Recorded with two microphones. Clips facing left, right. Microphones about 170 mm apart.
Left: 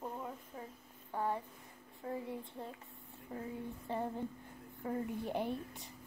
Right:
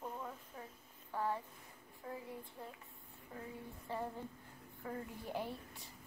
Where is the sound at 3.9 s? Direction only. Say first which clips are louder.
Left 4 dB; 20° left (ahead or behind).